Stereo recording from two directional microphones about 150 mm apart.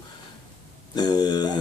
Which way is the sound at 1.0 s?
25° left (ahead or behind).